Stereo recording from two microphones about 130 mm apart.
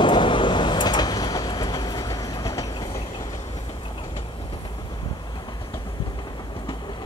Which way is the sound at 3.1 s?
25° left (ahead or behind).